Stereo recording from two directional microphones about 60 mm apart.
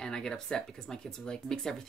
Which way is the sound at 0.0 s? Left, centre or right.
Centre.